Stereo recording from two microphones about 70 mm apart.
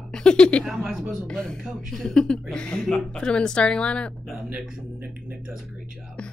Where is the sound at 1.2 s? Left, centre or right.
Centre.